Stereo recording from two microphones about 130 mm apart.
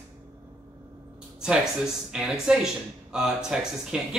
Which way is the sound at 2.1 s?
5° right (ahead or behind).